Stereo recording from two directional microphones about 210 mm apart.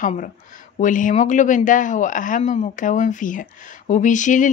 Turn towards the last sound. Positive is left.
turn(degrees=35)  # may be behind; listen again after turning